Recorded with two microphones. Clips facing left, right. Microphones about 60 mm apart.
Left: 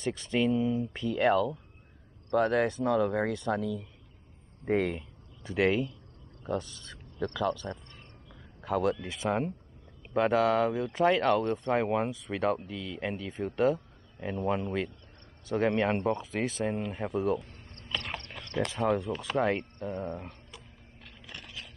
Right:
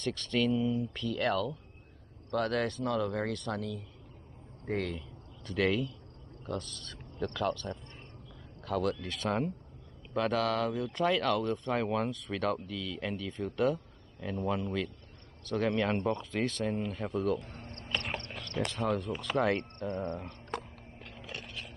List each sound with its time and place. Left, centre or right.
0.0 s speech: centre
4.7 s speech: left
5.4 s speech: centre
14.4 s speech: left; by 17.5 s centre
17.5 s computer keyboard: right
18.7 s speech: centre
21.0 s biting: centre